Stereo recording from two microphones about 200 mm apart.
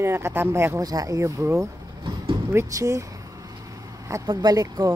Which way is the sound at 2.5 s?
15° right (ahead or behind).